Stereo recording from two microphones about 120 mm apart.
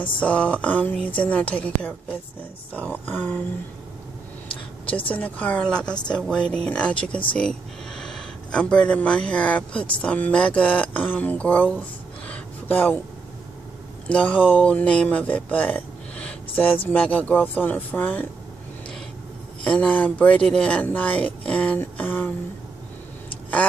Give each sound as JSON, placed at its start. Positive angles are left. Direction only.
{"t": 0.0, "sound": "speech", "side_deg": 10}
{"t": 5.0, "sound": "speech", "side_deg": 15}
{"t": 14.0, "sound": "speech", "side_deg": 10}
{"t": 19.6, "sound": "speech", "side_deg": 10}